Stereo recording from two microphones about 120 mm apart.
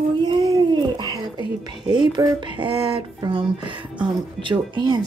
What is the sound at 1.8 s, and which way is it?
Speech, 40° right (ahead or behind).